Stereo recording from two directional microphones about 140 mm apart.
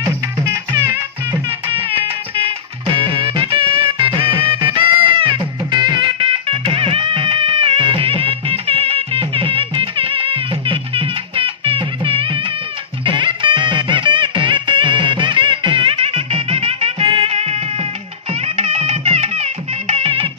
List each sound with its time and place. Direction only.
2.3 s music: 40° right (ahead or behind)